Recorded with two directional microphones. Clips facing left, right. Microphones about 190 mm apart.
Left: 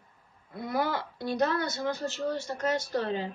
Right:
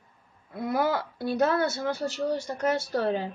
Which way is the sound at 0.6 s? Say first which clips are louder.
Right 4 dB; centre (ahead or behind).